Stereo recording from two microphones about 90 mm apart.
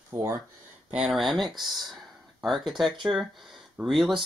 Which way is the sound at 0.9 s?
5° right (ahead or behind).